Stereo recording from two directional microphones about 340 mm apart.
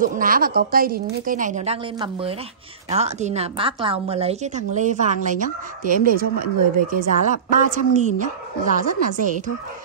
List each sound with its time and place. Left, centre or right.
0.0 s a woman's voice: right